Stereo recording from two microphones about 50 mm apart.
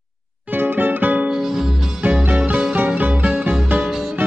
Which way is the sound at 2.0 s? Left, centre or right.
Right.